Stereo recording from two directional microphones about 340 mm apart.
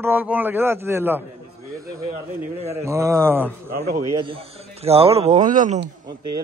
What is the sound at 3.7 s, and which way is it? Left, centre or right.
Speech, right.